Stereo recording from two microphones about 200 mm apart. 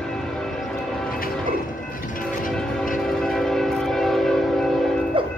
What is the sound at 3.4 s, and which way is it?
Train, centre (ahead or behind).